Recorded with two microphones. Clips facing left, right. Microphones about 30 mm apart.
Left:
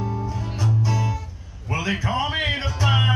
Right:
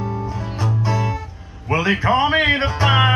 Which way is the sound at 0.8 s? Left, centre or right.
Right.